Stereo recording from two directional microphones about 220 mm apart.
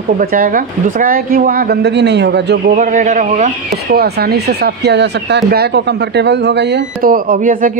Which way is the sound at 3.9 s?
45° right (ahead or behind).